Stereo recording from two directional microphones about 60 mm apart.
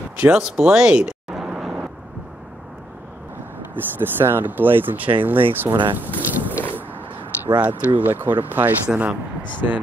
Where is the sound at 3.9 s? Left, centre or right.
Right.